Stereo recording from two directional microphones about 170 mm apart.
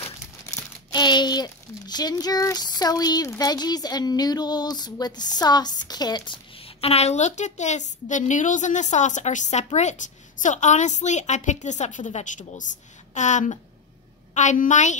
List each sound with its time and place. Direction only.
0.5 s a child's voice: 25° left (ahead or behind); by 15.0 s 45° left (ahead or behind)